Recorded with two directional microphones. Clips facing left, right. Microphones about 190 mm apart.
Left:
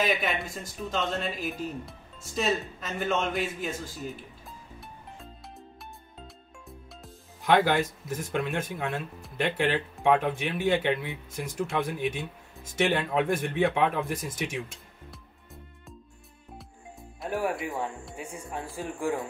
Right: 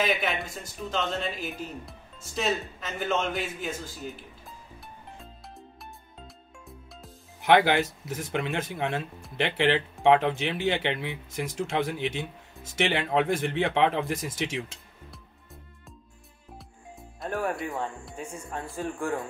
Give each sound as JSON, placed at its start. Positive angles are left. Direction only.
{"t": 0.0, "sound": "speech", "side_deg": 0}
{"t": 7.4, "sound": "speech", "side_deg": -75}
{"t": 8.2, "sound": "speech", "side_deg": -90}
{"t": 17.3, "sound": "speech", "side_deg": 10}